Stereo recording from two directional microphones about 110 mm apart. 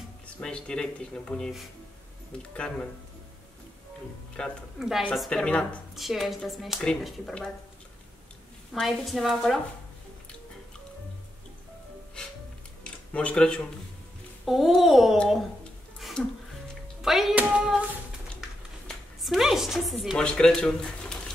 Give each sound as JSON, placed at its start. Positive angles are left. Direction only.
{"t": 0.4, "sound": "speech", "side_deg": 10}
{"t": 4.4, "sound": "speech", "side_deg": 10}
{"t": 4.7, "sound": "speech", "side_deg": -5}
{"t": 8.7, "sound": "speech", "side_deg": 0}
{"t": 13.1, "sound": "speech", "side_deg": 10}
{"t": 16.0, "sound": "a sound", "side_deg": 5}
{"t": 16.8, "sound": "music", "side_deg": 0}
{"t": 17.4, "sound": "hands", "side_deg": -10}
{"t": 18.9, "sound": "a woman's voice", "side_deg": 0}